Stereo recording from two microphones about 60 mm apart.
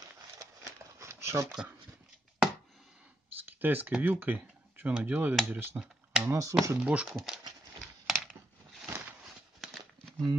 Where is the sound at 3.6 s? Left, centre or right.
Right.